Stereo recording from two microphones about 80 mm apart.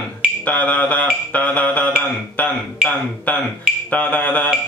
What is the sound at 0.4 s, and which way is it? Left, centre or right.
Mantra, centre.